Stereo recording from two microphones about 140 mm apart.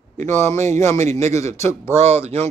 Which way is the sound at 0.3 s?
20° left (ahead or behind).